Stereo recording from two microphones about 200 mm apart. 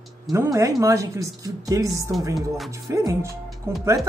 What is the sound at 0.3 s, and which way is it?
Speech, 15° right (ahead or behind).